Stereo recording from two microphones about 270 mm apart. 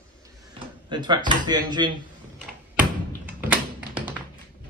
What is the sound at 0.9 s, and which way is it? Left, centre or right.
Speech, centre.